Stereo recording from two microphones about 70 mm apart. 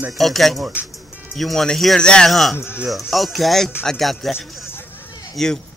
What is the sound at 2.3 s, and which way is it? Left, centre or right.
Speech, centre.